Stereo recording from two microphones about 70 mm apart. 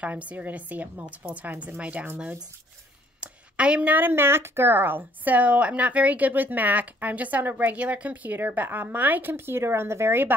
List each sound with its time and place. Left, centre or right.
0.0 s speech: right
3.2 s speech: centre; by 10.3 s right